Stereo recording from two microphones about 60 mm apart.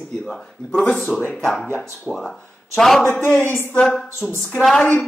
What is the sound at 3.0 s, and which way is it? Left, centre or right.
Speech, left.